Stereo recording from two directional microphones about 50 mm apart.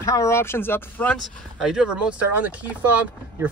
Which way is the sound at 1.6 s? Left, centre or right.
Centre.